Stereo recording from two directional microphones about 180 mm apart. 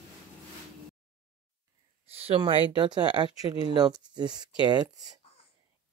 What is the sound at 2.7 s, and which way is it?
Speech, 25° right (ahead or behind).